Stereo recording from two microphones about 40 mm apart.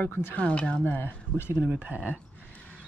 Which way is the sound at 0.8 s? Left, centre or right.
Left.